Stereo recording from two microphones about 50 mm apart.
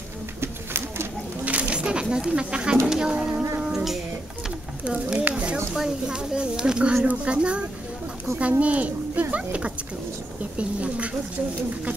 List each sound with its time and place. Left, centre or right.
0.4 s bird: right
1.4 s bird: right
2.9 s speech: centre
3.6 s child singing: centre
5.8 s speech: centre